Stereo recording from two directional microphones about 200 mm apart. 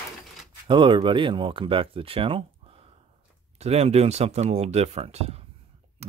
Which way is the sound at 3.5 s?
30° right (ahead or behind).